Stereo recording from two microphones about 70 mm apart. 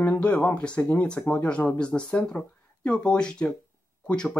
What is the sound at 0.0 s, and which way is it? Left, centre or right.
Speech, left.